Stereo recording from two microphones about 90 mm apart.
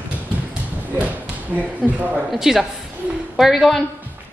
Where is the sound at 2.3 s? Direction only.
5° right (ahead or behind).